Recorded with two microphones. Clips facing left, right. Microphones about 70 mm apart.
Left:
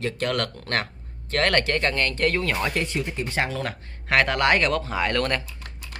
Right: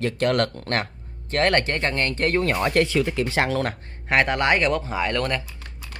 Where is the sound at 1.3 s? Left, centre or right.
Right.